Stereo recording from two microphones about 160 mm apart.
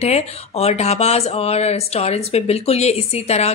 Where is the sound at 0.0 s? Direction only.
40° left (ahead or behind).